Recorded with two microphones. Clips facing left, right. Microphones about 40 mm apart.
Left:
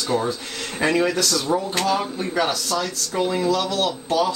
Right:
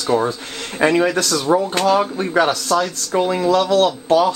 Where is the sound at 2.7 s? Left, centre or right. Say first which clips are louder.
Right 6 dB; centre; by 4.3 s right.